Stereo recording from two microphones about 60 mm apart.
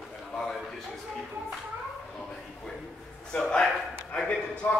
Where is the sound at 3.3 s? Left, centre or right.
Centre.